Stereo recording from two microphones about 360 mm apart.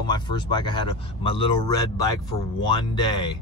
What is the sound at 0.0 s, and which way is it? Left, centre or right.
Speech, centre.